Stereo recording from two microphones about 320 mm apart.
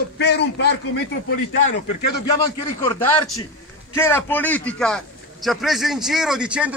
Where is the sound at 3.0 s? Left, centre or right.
Centre.